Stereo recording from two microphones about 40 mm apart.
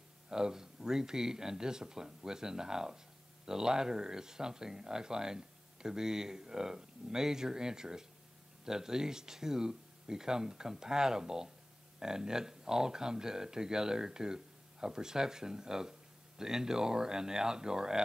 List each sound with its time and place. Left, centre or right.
0.3 s speech: centre